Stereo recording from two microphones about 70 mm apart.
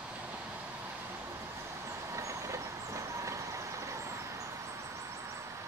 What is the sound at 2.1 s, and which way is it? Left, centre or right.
Vehicle, right.